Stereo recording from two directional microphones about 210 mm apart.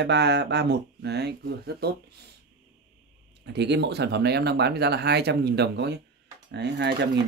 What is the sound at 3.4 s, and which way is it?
Speech, 55° right (ahead or behind).